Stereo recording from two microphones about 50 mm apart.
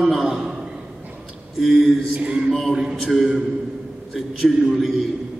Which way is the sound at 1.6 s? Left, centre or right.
Centre.